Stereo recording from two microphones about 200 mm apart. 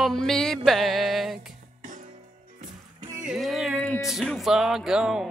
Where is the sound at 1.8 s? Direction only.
40° right (ahead or behind).